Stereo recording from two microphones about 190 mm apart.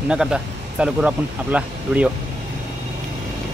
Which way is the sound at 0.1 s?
5° right (ahead or behind).